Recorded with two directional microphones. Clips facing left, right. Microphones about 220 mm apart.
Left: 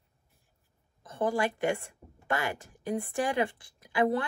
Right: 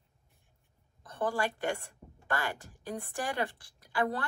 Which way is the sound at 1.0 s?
20° left (ahead or behind).